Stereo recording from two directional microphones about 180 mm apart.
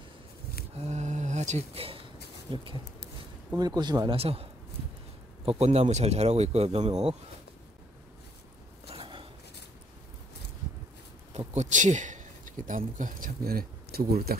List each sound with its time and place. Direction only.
0.7 s a sound: 40° right (ahead or behind)
2.5 s speech: 25° right (ahead or behind)
8.8 s zipper: 30° right (ahead or behind)
11.3 s speech: 40° right (ahead or behind); by 14.4 s 60° right (ahead or behind)